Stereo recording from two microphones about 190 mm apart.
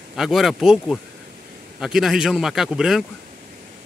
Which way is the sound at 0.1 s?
Centre (ahead or behind).